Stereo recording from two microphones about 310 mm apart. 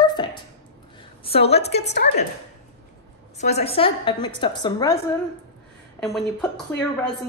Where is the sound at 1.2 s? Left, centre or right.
Centre.